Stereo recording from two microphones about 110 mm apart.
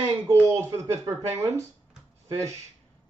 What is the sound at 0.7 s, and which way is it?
Speech, 30° right (ahead or behind).